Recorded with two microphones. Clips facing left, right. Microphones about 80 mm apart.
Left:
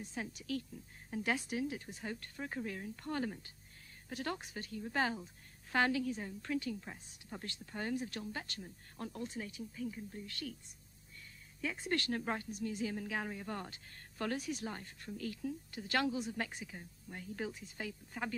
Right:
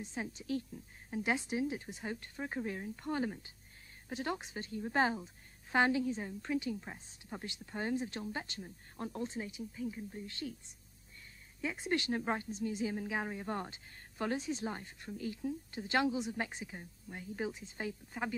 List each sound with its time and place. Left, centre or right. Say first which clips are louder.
0.0 s a woman's voice: right 2 dB; right
11.6 s a woman's voice: right 2 dB; centre
18.1 s speech: right 2 dB; centre